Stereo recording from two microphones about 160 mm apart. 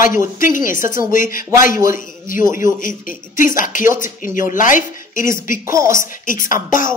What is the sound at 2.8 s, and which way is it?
Speech, 60° left (ahead or behind).